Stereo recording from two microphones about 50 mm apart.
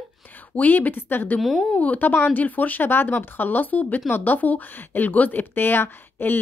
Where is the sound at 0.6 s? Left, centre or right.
Left.